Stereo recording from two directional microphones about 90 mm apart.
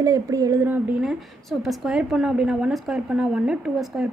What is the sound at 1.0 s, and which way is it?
A woman's voice, centre (ahead or behind).